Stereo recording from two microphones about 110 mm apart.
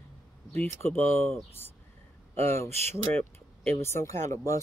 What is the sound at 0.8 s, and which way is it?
Speech, 20° left (ahead or behind).